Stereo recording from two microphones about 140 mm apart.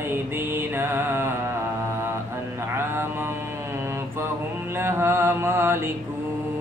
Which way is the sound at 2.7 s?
15° right (ahead or behind).